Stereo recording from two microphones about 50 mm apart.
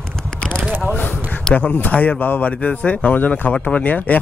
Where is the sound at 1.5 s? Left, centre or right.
Left.